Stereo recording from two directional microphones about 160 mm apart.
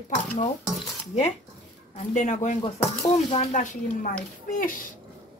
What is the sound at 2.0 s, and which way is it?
Speech, 50° left (ahead or behind).